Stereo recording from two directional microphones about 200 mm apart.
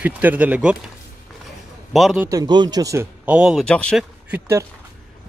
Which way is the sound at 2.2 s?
20° right (ahead or behind).